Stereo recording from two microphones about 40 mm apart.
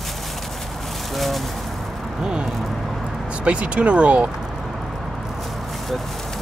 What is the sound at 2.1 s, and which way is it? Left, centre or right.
Speech, right.